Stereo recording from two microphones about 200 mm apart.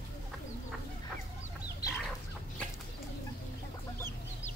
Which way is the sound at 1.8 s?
20° left (ahead or behind).